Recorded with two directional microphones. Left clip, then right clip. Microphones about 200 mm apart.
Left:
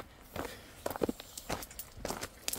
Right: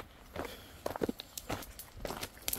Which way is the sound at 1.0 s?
10° right (ahead or behind).